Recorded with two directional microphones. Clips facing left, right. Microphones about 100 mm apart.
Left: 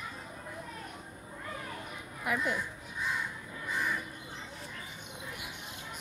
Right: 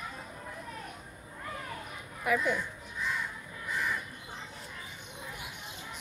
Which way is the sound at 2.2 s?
5° left (ahead or behind).